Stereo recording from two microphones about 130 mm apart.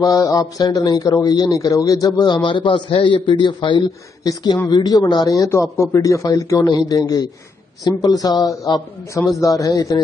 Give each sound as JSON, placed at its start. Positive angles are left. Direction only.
{"t": 0.0, "sound": "a man's voice", "side_deg": 25}